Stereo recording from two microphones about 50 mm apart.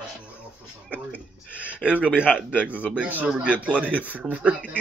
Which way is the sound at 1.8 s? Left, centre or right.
Right.